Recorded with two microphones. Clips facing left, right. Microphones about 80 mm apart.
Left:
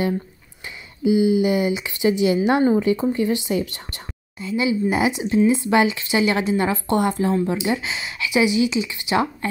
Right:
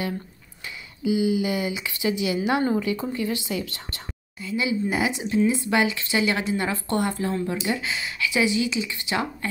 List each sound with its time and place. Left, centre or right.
1.0 s speech: left